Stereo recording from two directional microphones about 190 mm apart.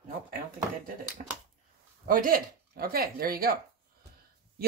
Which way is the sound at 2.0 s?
50° right (ahead or behind).